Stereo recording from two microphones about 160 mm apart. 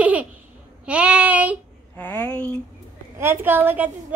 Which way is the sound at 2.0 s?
10° left (ahead or behind).